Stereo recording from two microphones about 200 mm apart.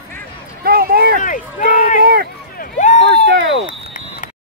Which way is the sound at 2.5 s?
40° left (ahead or behind).